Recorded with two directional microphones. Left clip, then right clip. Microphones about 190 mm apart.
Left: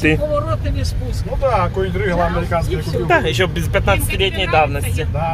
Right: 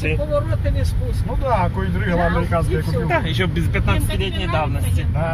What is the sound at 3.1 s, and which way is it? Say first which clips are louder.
Speech: left 7 dB; 30° left (ahead or behind).